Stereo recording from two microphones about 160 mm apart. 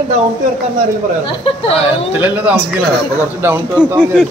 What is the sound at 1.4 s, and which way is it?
Speech, 35° left (ahead or behind).